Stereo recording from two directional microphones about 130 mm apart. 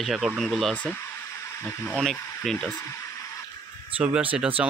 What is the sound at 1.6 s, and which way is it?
Speech, 15° left (ahead or behind).